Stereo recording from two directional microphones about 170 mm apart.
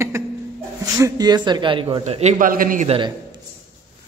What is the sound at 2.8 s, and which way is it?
Speech, 30° right (ahead or behind).